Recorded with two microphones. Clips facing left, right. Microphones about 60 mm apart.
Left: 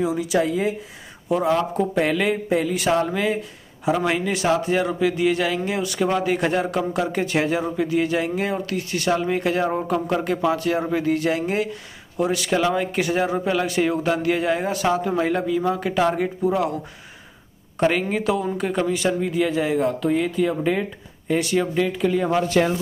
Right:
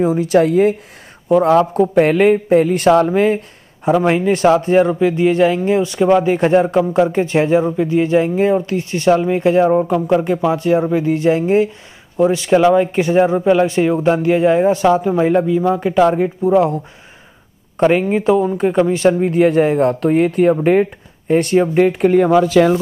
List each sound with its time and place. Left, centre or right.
0.0 s speech: right
0.4 s a man's voice: right
17.7 s speech: right
19.8 s a man's voice: right